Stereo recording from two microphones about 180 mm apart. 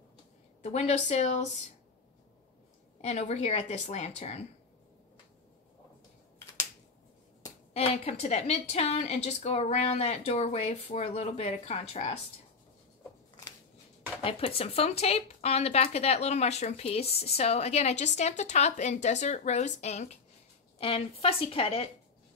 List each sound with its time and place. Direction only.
0.6 s speech: 40° left (ahead or behind)
3.0 s speech: 40° left (ahead or behind)
7.7 s speech: 35° left (ahead or behind)
14.2 s speech: 35° left (ahead or behind)